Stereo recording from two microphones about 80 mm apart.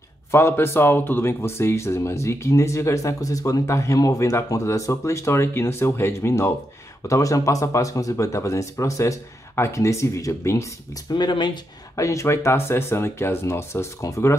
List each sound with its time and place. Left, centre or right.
0.3 s speech: left
11.1 s speech: left
12.0 s speech: left